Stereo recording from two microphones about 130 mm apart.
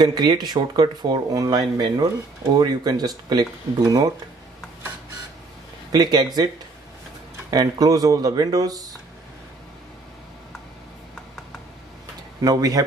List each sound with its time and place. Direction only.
0.0 s speech: 35° right (ahead or behind)
5.9 s speech: 30° right (ahead or behind)
7.5 s speech: 30° right (ahead or behind)
12.4 s speech: 30° right (ahead or behind)